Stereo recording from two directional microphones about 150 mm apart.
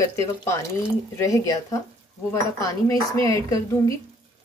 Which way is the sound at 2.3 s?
20° left (ahead or behind).